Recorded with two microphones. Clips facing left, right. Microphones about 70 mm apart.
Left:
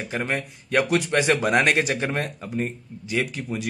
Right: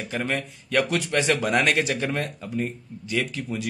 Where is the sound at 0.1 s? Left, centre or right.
Centre.